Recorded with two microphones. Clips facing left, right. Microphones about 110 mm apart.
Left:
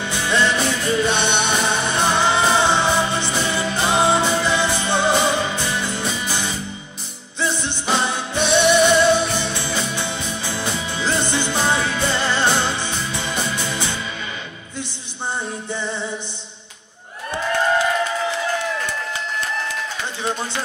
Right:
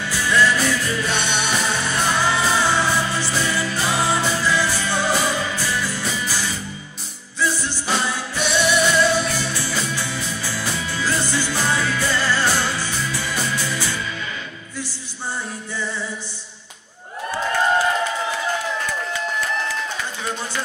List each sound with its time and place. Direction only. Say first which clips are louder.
0.0 s music: right 1 dB; 25° left (ahead or behind)
15.7 s music: left 1 dB; 20° left (ahead or behind)